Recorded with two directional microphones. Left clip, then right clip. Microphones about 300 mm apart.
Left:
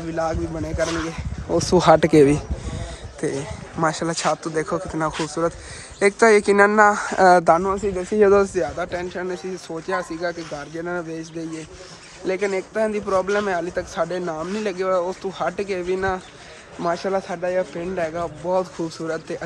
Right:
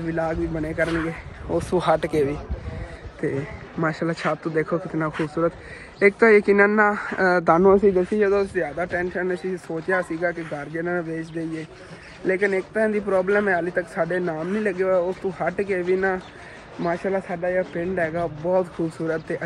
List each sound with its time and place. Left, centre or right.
0.1 s speech: centre
1.5 s speech: left
3.8 s speech: centre
8.2 s speech: left
8.6 s speech: centre
12.3 s speech: centre